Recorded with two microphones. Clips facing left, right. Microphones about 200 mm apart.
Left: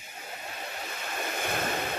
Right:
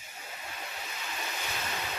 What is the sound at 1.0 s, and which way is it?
Waves, 55° left (ahead or behind).